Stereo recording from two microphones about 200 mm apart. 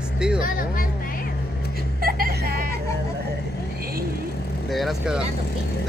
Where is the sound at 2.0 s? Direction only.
45° right (ahead or behind).